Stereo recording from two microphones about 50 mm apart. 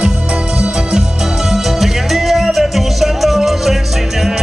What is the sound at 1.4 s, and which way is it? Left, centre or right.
Music, centre.